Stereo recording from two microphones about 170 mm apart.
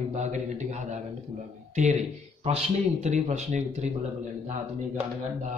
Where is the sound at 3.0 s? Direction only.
40° right (ahead or behind).